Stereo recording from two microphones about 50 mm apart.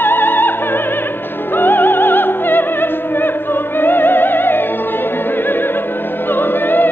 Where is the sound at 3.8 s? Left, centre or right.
Left.